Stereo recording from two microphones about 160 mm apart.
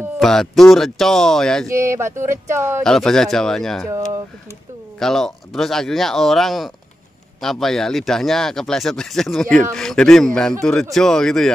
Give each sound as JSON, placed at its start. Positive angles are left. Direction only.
{"t": 0.2, "sound": "speech", "side_deg": 0}
{"t": 1.7, "sound": "speech", "side_deg": -20}
{"t": 2.8, "sound": "speech", "side_deg": 5}
{"t": 4.9, "sound": "speech", "side_deg": 0}